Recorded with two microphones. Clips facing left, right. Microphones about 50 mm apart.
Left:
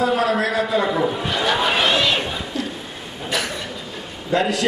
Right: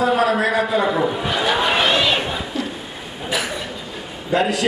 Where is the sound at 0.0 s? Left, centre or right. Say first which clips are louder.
Right 2 dB; centre.